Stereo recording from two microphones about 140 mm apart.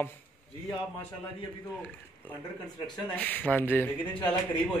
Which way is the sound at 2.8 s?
10° left (ahead or behind).